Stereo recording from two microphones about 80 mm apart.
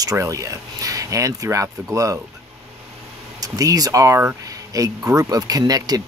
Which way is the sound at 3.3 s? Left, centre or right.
Right.